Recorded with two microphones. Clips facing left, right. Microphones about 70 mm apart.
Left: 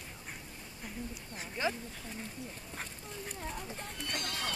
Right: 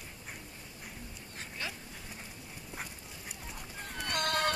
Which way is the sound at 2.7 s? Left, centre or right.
Centre.